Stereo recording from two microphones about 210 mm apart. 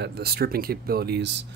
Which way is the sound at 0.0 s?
50° right (ahead or behind).